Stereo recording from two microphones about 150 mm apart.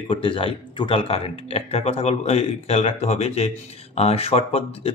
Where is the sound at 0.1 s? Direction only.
35° left (ahead or behind).